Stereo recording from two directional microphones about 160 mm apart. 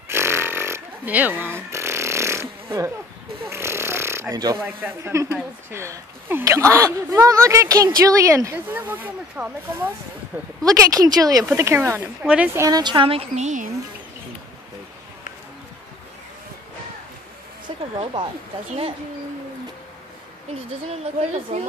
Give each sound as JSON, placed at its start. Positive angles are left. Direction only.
{"t": 0.1, "sound": "burping", "side_deg": -15}
{"t": 3.4, "sound": "a woman's voice", "side_deg": -15}
{"t": 10.6, "sound": "a woman's voice", "side_deg": -20}
{"t": 12.6, "sound": "a woman's voice", "side_deg": -25}
{"t": 17.6, "sound": "a sound", "side_deg": -30}
{"t": 18.7, "sound": "a woman's voice", "side_deg": -35}
{"t": 21.5, "sound": "a woman's voice", "side_deg": -45}